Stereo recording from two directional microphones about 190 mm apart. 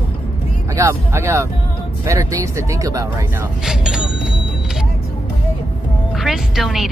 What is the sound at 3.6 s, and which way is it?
Speech, 5° right (ahead or behind).